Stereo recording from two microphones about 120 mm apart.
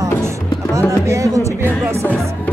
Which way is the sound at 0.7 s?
25° right (ahead or behind).